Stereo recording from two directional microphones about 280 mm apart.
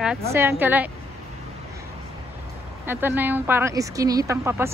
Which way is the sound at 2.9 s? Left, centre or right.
Centre.